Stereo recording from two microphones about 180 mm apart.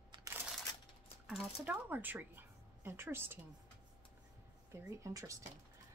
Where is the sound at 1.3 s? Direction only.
5° right (ahead or behind).